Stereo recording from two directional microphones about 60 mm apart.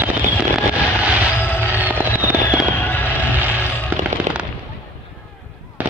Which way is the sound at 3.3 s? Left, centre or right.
Right.